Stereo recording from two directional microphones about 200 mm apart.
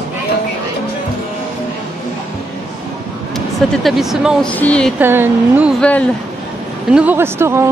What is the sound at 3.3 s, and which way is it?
A woman's voice, centre (ahead or behind).